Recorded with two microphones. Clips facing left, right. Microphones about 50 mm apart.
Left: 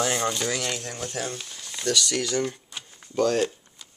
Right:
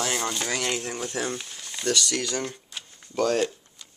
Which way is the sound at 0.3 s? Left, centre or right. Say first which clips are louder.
Even; centre.